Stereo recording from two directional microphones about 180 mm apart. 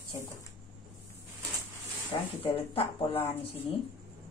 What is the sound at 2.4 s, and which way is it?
Speech, 30° left (ahead or behind).